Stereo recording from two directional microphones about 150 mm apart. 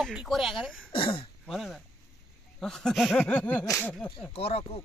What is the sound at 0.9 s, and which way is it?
Speech, 35° left (ahead or behind).